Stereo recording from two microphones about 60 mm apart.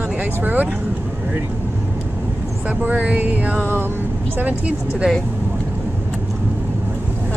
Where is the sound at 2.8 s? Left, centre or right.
Right.